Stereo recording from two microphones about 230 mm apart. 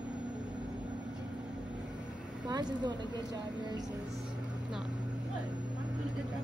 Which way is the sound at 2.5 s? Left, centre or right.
Centre.